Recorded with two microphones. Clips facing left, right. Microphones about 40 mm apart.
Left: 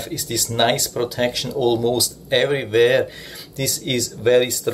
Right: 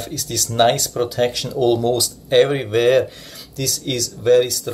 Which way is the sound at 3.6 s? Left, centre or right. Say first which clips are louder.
Left 1 dB; centre.